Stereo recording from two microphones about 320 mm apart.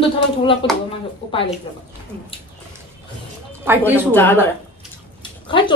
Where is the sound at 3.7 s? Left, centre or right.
Centre.